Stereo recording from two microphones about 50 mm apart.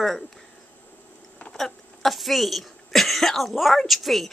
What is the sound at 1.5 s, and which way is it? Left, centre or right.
Speech, centre.